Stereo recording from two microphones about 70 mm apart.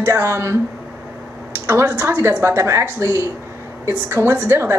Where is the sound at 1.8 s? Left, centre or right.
Right.